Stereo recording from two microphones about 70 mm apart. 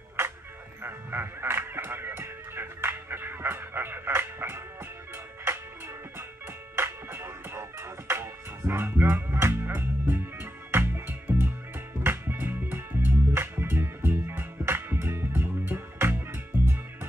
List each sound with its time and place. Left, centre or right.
0.8 s music: right
6.7 s music: right